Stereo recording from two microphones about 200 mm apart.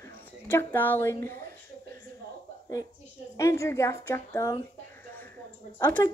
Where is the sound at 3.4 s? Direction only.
15° left (ahead or behind).